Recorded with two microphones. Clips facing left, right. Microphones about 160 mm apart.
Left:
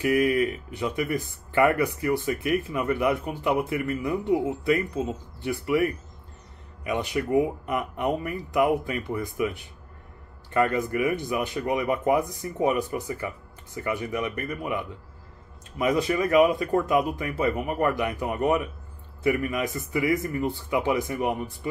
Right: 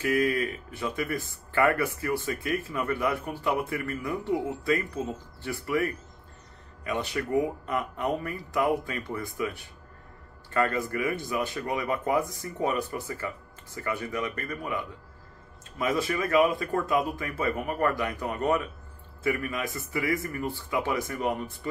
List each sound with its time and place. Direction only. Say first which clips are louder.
0.0 s speech: left 4 dB; 15° left (ahead or behind)